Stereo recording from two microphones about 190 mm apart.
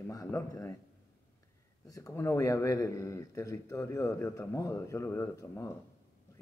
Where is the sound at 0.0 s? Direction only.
15° left (ahead or behind).